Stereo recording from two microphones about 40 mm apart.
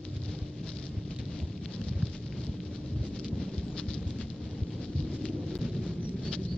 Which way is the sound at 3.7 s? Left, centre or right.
Left.